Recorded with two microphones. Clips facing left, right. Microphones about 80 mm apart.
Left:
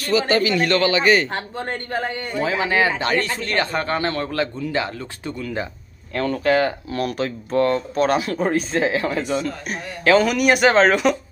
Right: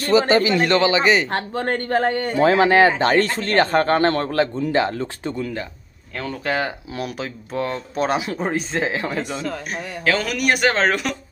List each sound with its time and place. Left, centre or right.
0.0 s speech: right
1.3 s speech: right
6.4 s speech: centre
10.0 s speech: centre